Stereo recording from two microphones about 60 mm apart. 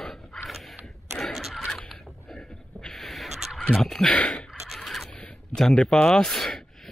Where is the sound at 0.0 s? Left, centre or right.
Centre.